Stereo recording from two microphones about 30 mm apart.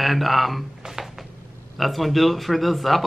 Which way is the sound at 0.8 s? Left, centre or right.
Centre.